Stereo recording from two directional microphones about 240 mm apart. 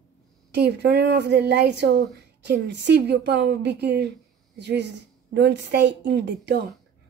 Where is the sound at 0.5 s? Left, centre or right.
Right.